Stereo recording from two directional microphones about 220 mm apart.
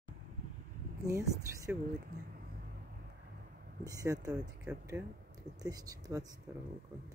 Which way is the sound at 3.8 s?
15° right (ahead or behind).